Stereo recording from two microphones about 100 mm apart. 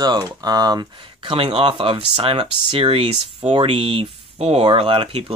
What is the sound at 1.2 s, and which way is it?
Speech, 70° right (ahead or behind).